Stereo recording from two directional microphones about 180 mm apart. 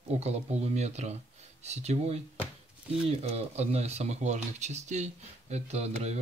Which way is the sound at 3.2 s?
35° right (ahead or behind).